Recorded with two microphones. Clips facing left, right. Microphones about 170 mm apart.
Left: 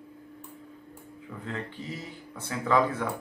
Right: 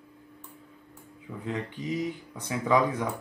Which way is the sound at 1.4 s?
15° right (ahead or behind).